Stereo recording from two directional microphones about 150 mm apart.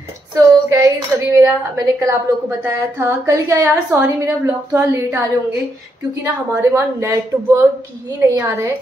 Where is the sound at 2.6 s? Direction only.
15° right (ahead or behind).